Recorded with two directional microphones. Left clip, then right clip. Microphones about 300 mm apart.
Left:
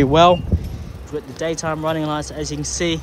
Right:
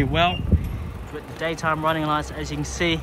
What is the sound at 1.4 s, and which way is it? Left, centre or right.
Speech, centre.